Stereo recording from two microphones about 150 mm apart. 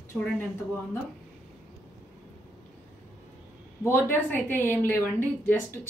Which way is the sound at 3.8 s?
15° left (ahead or behind).